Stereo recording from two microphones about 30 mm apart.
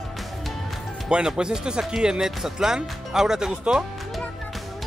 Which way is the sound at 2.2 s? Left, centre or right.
Centre.